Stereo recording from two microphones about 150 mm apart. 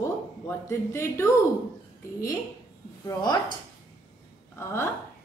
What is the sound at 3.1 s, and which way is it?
Speech, 30° left (ahead or behind).